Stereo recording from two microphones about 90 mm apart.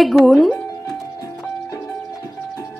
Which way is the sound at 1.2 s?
40° left (ahead or behind).